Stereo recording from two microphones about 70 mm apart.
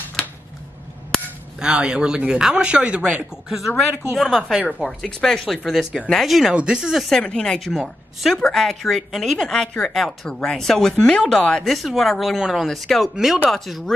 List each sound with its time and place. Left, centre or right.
0.2 s a sound: centre
1.6 s speech: centre
3.5 s speech: centre
4.6 s speech: centre
4.8 s speech: centre
5.7 s speech: centre
6.5 s speech: centre
7.1 s speech: centre
7.7 s speech: centre
8.4 s speech: centre
12.4 s speech: centre
12.6 s speech: centre